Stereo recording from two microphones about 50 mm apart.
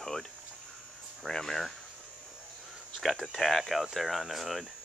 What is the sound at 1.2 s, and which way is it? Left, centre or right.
Speech, centre.